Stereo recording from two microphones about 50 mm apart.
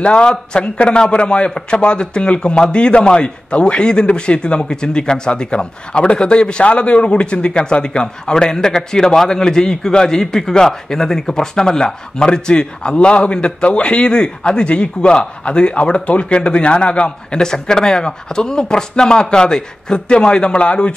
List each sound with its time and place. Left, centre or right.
0.0 s speech: centre